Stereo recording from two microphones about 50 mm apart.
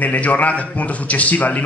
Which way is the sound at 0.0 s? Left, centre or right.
Left.